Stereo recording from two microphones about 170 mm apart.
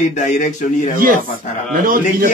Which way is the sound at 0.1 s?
45° left (ahead or behind).